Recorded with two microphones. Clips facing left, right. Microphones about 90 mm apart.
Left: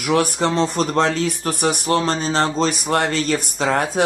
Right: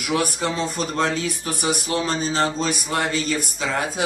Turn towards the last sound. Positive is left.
turn(degrees=55)  # may be behind; listen again after turning